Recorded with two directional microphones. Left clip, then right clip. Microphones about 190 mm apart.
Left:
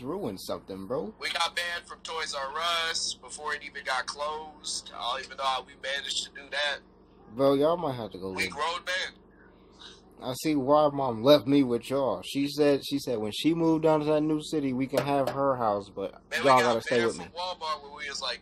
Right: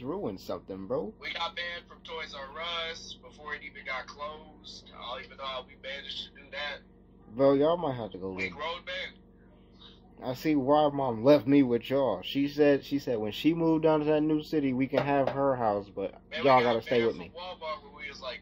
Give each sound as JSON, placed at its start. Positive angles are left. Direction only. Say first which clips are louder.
{"t": 0.0, "sound": "a sound", "louder": "left 1 dB", "side_deg": 10}
{"t": 0.8, "sound": "speech", "louder": "even", "side_deg": 5}
{"t": 1.2, "sound": "speech", "louder": "left 5 dB", "side_deg": 55}
{"t": 7.3, "sound": "a man's voice", "louder": "even", "side_deg": 5}
{"t": 8.3, "sound": "speech", "louder": "left 6 dB", "side_deg": 55}
{"t": 10.2, "sound": "speech", "louder": "even", "side_deg": 5}
{"t": 17.1, "sound": "a man's voice", "louder": "left 4 dB", "side_deg": 55}